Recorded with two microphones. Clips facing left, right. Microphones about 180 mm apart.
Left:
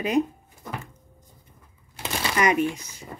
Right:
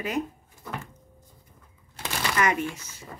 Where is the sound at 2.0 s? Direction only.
20° left (ahead or behind).